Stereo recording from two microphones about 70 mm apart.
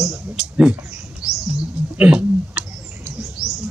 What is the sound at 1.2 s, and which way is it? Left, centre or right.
Bird, centre.